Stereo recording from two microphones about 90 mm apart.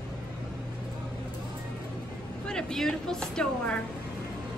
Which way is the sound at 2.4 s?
10° left (ahead or behind).